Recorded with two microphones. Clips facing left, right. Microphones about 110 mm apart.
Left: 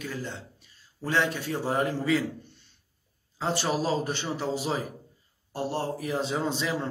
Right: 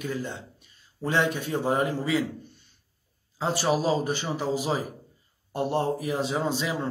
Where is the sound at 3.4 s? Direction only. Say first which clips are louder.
Right 3 dB; 10° right (ahead or behind).